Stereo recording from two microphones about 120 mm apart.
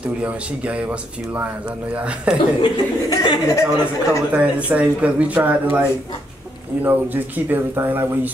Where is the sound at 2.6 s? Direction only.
35° left (ahead or behind).